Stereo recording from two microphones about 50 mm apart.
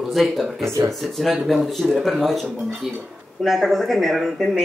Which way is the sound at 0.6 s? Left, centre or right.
Right.